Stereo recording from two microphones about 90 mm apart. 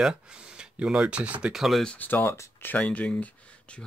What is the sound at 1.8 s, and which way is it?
Speech, 15° left (ahead or behind).